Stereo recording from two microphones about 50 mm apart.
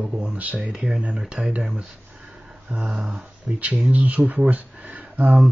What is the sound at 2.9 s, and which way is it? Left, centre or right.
Speech, centre.